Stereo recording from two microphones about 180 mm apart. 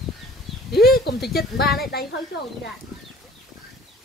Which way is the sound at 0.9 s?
60° left (ahead or behind).